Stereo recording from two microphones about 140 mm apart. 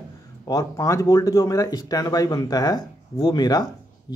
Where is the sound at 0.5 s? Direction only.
25° left (ahead or behind).